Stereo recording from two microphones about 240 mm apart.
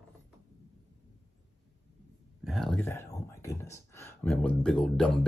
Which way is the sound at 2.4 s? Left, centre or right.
Centre.